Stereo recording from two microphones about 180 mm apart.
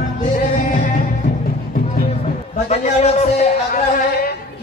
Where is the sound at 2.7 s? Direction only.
40° left (ahead or behind).